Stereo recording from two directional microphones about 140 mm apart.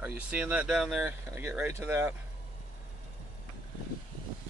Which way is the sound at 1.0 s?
15° right (ahead or behind).